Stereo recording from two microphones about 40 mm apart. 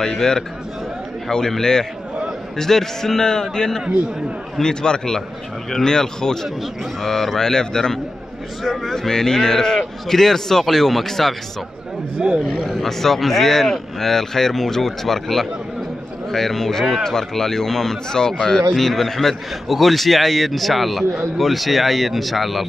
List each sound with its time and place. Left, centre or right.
0.0 s speech: centre
1.6 s speech: centre
12.5 s speech: centre
18.7 s a man's voice: centre